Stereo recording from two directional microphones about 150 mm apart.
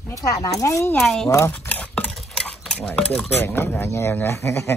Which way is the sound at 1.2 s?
15° left (ahead or behind).